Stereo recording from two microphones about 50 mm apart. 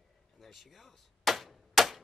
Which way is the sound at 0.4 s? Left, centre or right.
Centre.